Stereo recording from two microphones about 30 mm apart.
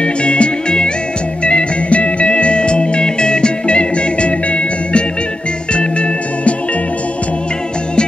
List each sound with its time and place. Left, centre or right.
0.0 s music: left